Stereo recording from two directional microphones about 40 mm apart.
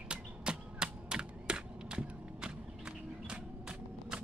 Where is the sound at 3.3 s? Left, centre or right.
Right.